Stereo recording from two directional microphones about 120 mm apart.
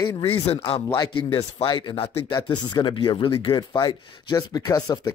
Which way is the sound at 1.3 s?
45° left (ahead or behind).